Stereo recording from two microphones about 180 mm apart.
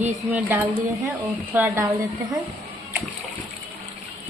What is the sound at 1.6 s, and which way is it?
Speech, 15° right (ahead or behind).